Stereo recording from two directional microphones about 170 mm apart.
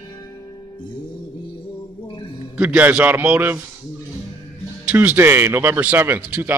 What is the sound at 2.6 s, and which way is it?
A man's voice, 10° right (ahead or behind).